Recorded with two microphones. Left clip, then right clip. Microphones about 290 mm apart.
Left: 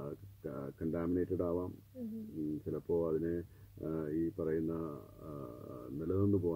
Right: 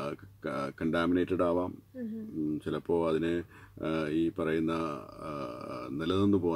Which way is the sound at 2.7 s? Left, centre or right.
Right.